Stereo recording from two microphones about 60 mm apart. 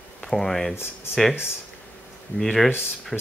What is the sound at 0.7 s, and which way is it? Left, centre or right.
Speech, left.